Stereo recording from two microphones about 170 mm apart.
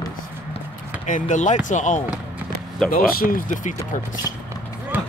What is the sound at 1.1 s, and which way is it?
Speech, 50° left (ahead or behind).